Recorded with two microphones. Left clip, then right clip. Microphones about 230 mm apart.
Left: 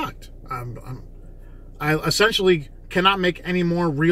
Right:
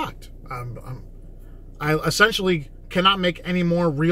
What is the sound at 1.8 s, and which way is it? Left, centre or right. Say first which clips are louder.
Speech: right 1 dB; centre.